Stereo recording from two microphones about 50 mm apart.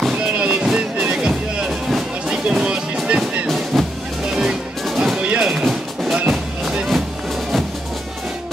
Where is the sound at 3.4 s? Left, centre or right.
Centre.